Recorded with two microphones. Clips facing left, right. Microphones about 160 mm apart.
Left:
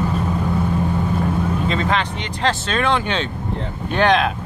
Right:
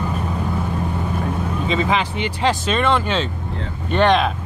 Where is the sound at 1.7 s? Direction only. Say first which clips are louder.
Right 1 dB; 5° right (ahead or behind).